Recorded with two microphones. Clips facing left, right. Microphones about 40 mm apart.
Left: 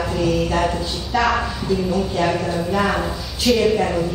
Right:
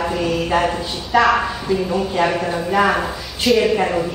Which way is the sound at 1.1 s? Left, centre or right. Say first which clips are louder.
Right 4 dB; centre.